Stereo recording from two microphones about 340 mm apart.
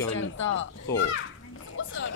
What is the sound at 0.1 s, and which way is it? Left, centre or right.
A child's voice, left.